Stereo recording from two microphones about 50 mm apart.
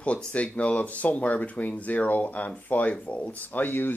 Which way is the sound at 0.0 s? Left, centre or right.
Left.